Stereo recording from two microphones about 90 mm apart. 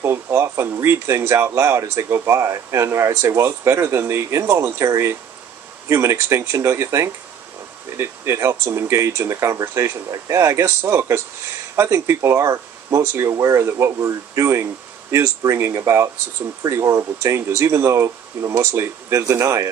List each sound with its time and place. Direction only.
0.0 s speech: 30° right (ahead or behind)